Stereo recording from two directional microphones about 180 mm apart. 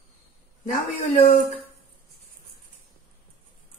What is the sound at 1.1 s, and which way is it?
Speech, 40° left (ahead or behind).